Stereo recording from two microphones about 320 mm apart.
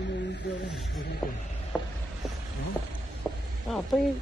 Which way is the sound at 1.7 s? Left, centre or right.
Centre.